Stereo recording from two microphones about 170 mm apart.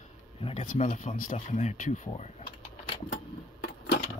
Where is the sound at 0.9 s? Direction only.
50° left (ahead or behind).